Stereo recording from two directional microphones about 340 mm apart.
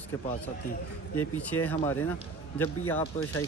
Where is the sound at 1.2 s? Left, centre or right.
Centre.